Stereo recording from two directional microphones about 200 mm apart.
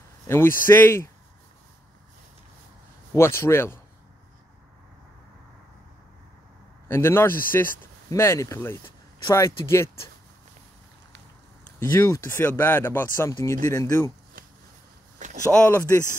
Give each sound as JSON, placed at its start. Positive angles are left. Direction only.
{"t": 0.3, "sound": "speech", "side_deg": 10}
{"t": 3.2, "sound": "speech", "side_deg": 15}
{"t": 6.9, "sound": "speech", "side_deg": 10}
{"t": 11.8, "sound": "speech", "side_deg": 15}
{"t": 15.5, "sound": "speech", "side_deg": 10}